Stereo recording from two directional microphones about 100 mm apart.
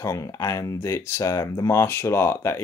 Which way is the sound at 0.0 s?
35° left (ahead or behind).